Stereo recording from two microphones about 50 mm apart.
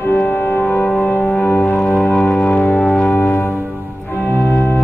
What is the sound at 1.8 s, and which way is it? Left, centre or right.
Music, left.